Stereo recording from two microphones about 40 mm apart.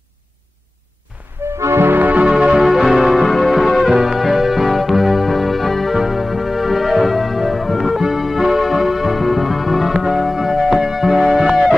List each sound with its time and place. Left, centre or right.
1.7 s music: right
2.0 s music: right
2.2 s music: right
2.6 s music: centre
3.9 s music: centre
5.9 s keyboard: centre
8.0 s music: centre